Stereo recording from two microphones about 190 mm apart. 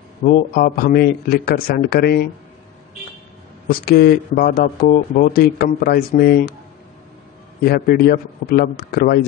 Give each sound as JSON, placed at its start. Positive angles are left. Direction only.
{"t": 0.2, "sound": "speech", "side_deg": 45}
{"t": 3.6, "sound": "speech", "side_deg": 55}
{"t": 7.6, "sound": "speech", "side_deg": 50}